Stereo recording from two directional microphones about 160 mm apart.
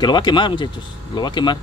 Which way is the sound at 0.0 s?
30° left (ahead or behind).